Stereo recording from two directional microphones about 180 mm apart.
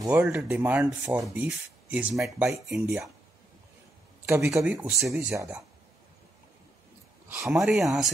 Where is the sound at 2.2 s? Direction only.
15° right (ahead or behind).